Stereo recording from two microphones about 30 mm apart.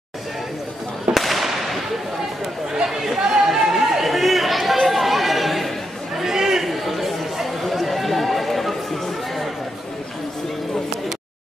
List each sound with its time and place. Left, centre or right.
1.1 s fireworks: centre
2.7 s chatter: centre
6.3 s chatter: centre
6.6 s chatter: centre